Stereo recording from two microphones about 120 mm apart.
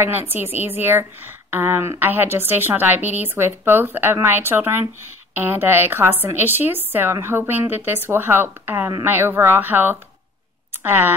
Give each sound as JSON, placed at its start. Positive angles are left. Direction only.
{"t": 0.0, "sound": "a woman's voice", "side_deg": -20}